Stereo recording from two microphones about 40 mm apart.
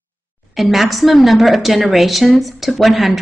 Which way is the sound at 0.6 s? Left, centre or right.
Centre.